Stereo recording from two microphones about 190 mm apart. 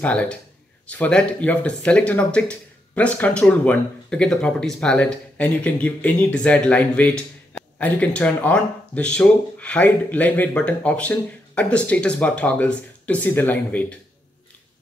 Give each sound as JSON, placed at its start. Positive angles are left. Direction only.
{"t": 0.0, "sound": "speech", "side_deg": 5}